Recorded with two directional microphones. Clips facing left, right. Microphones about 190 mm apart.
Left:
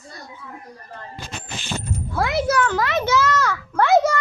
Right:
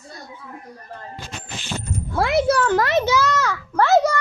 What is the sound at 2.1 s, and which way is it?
Speech, 25° right (ahead or behind).